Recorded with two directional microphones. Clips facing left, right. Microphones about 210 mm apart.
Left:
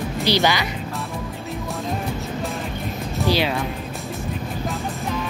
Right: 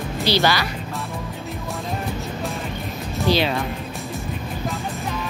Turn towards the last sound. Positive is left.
turn(degrees=10)  # may be behind; listen again after turning